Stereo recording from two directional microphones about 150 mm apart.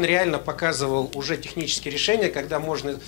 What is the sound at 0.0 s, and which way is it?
Speech, 10° left (ahead or behind).